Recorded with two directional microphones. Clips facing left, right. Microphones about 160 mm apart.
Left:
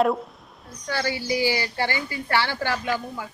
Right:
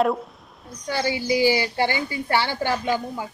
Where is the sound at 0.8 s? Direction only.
15° right (ahead or behind).